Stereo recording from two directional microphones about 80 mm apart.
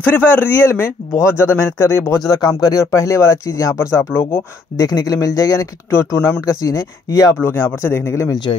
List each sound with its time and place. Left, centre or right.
0.0 s speech: left
0.7 s speech: left
2.1 s speech: left
4.1 s speech: left
4.7 s speech: left
5.9 s speech: left
6.4 s speech: left
7.4 s speech: left